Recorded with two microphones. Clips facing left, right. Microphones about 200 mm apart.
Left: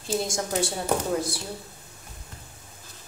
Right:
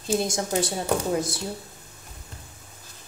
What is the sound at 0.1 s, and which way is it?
Speech, 20° right (ahead or behind).